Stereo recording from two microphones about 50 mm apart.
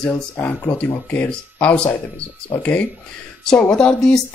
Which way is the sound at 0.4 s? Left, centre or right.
Left.